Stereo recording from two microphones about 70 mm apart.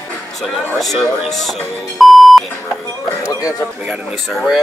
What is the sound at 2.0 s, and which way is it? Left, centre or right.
Beep, centre.